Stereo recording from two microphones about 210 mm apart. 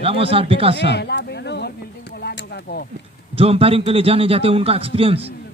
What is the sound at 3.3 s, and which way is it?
A man's voice, 25° right (ahead or behind).